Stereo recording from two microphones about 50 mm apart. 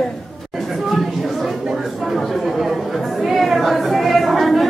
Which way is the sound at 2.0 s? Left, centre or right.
Centre.